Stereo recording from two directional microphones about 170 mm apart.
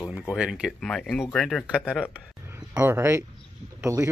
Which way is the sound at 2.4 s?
15° right (ahead or behind).